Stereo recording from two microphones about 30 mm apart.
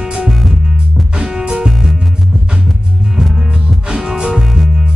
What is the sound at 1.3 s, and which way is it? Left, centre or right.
Music, right.